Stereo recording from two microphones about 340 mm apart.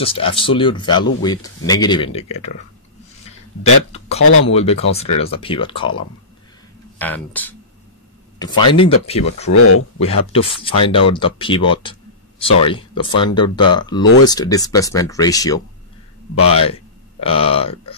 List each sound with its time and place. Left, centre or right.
0.0 s speech: centre
3.3 s a sound: centre
4.2 s speech: left
4.6 s speech: centre
9.5 s speech: left
9.9 s speech: centre
17.2 s speech: centre